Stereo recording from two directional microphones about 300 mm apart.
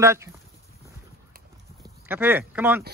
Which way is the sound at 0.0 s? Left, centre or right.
Centre.